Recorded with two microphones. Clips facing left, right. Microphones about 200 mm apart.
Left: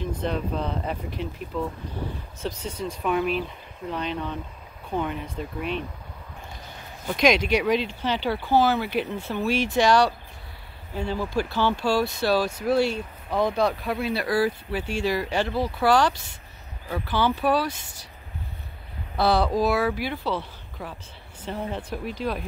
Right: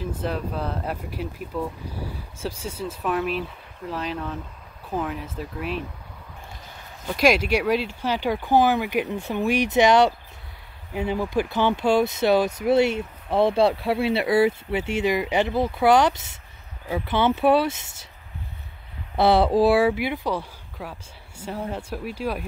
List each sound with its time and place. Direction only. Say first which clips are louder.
0.0 s speech: even; 5° right (ahead or behind)
7.1 s speech: right 1 dB; 5° right (ahead or behind); by 18.0 s 25° right (ahead or behind)
19.1 s speech: right 4 dB; 25° right (ahead or behind); by 22.4 s 10° right (ahead or behind)